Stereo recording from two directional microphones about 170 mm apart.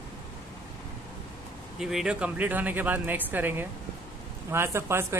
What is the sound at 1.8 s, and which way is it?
Speech, centre (ahead or behind).